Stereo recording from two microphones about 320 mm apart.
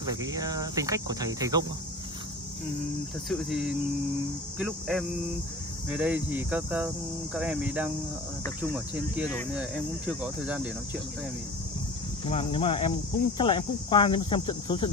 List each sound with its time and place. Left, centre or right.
0.0 s speech: centre
3.3 s speech: centre
12.3 s speech: centre